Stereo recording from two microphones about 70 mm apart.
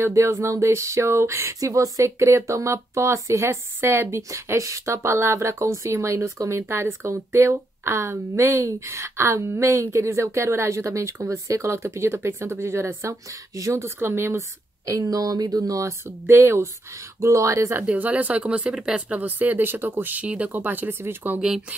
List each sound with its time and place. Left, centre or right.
0.0 s a woman's voice: right
14.9 s speech: right
16.3 s a woman's voice: right
17.2 s speech: right
17.8 s speech: right